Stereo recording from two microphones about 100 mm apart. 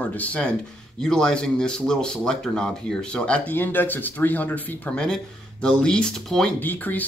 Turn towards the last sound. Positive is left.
turn(degrees=15)  # may be behind; listen again after turning